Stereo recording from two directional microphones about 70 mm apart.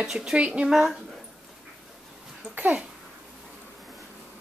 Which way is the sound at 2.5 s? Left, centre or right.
Right.